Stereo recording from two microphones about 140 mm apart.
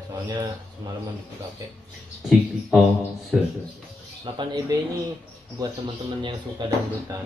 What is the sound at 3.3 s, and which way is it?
Speech, 5° right (ahead or behind).